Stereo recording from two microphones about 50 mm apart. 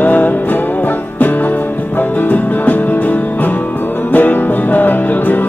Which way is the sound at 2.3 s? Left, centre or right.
Left.